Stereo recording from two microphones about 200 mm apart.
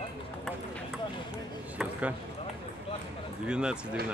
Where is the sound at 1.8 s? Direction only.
5° right (ahead or behind).